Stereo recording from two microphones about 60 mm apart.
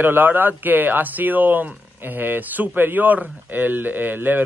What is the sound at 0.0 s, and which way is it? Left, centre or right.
Speech, right.